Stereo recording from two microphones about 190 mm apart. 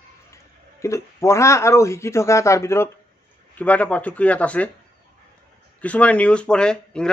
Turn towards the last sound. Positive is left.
turn(degrees=5)  # may be behind; listen again after turning